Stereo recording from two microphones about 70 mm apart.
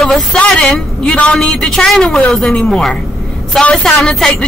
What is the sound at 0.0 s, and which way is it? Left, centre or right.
Speech, centre.